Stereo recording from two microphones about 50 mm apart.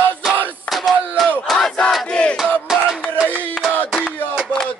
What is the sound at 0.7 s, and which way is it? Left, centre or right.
Battle cry, centre.